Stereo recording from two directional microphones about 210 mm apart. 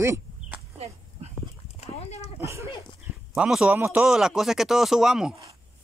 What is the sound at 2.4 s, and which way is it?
Speech, 15° right (ahead or behind).